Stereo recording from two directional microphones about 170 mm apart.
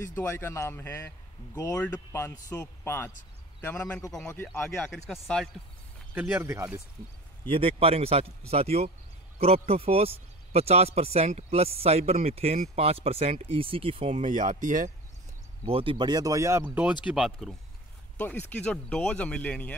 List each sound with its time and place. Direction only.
0.0 s a man's voice: 15° left (ahead or behind)
6.1 s speech: 15° right (ahead or behind)
7.4 s speech: 35° right (ahead or behind)
14.2 s speech: 50° right (ahead or behind)
15.6 s speech: 30° right (ahead or behind); by 17.6 s centre (ahead or behind)
18.1 s a sound: 10° left (ahead or behind)
18.5 s a man's voice: 5° left (ahead or behind)